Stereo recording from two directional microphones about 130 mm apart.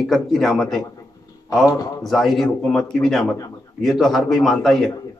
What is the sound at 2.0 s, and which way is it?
A man's voice, centre (ahead or behind).